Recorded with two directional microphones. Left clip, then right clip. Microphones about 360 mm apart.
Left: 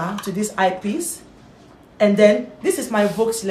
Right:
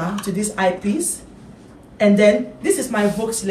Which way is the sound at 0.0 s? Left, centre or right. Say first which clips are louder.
Even; centre.